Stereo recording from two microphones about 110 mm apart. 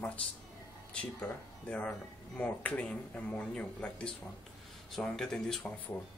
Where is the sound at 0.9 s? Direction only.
15° left (ahead or behind).